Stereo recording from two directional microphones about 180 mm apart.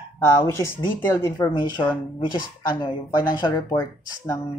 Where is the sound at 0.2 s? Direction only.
15° left (ahead or behind).